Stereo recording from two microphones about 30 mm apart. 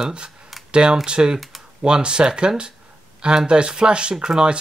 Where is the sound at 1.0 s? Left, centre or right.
Right.